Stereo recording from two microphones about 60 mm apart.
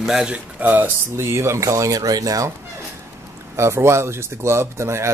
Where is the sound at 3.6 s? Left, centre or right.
Right.